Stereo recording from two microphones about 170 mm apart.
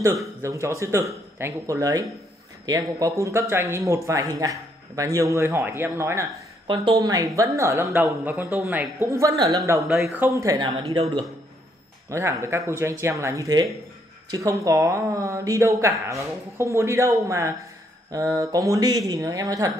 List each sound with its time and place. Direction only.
0.0 s speech: 15° right (ahead or behind)
6.7 s speech: 25° right (ahead or behind)
9.8 s speech: centre (ahead or behind)
10.0 s speech: 15° right (ahead or behind)